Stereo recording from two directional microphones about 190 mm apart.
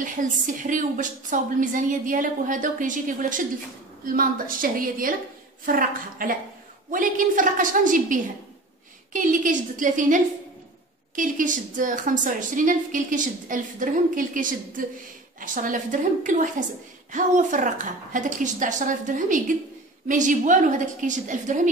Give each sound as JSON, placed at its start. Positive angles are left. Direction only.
{"t": 0.2, "sound": "a woman's voice", "side_deg": -45}